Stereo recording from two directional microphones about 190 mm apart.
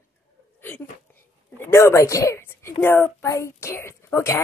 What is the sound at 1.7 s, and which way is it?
A woman's voice, 15° left (ahead or behind).